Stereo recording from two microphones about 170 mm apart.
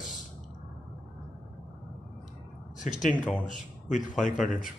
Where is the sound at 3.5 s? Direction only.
45° left (ahead or behind).